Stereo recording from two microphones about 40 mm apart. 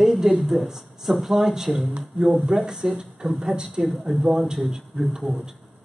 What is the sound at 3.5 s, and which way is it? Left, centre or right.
Speech, centre.